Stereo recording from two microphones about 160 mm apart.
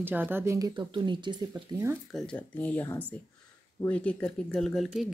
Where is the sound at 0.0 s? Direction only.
10° right (ahead or behind).